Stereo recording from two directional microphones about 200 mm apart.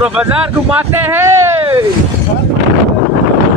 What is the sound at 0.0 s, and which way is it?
Speech, 5° right (ahead or behind).